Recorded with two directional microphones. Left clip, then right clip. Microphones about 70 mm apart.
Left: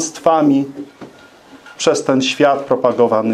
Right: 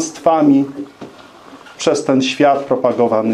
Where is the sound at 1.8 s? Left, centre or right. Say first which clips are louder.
Even; left.